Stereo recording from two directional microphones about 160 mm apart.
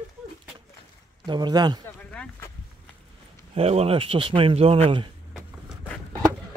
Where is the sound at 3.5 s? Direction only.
40° right (ahead or behind).